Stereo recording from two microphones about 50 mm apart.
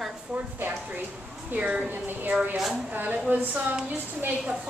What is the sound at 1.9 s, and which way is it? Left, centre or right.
Speech, right.